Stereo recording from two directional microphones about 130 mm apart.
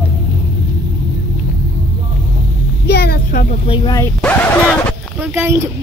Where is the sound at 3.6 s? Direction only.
40° left (ahead or behind).